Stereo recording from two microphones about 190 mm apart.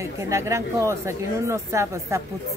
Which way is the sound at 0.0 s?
15° right (ahead or behind).